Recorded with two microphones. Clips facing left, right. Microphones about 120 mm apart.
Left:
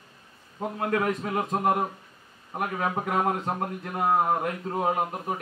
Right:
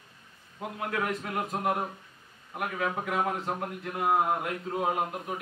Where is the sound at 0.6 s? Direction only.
40° left (ahead or behind).